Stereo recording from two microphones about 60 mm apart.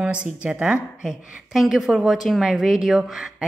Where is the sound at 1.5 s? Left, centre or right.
Centre.